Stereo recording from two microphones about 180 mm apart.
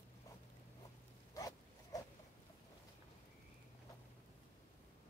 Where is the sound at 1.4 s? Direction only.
20° left (ahead or behind).